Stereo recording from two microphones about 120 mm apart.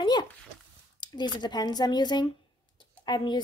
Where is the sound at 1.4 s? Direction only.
35° left (ahead or behind).